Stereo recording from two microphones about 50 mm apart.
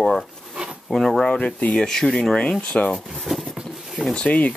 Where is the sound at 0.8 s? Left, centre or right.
Centre.